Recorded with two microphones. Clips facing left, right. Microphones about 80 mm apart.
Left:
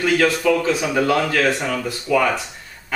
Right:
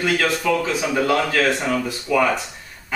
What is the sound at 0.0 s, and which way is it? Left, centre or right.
Speech, centre.